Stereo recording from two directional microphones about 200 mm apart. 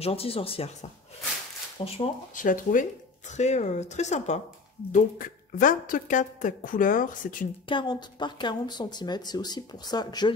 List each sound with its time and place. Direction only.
0.0 s speech: 30° left (ahead or behind)
1.8 s speech: 25° left (ahead or behind)
2.3 s a woman's voice: 40° left (ahead or behind)
7.6 s speech: 25° left (ahead or behind)